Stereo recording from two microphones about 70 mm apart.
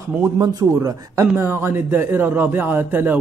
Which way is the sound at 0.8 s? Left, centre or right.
Right.